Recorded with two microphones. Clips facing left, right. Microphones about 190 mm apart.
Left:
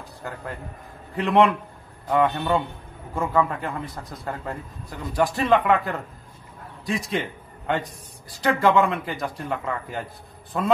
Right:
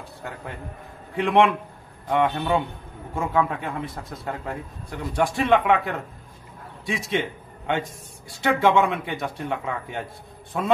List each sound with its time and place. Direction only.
1.1 s a man's voice: centre (ahead or behind)